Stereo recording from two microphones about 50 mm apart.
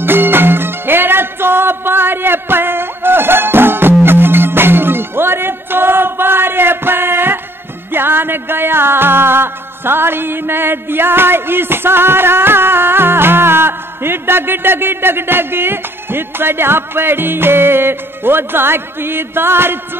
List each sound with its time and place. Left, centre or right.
0.0 s music: right